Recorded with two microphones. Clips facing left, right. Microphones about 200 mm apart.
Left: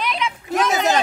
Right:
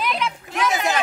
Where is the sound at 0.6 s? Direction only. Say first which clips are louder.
Left 2 dB; 40° left (ahead or behind).